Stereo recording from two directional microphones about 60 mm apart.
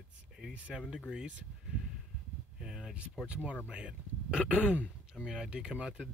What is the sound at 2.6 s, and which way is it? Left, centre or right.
Speech, centre.